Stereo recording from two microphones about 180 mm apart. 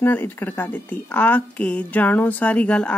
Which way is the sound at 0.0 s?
10° left (ahead or behind).